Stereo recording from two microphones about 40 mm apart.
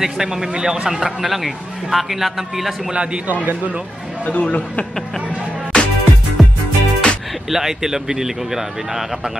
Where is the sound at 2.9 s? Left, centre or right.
Right.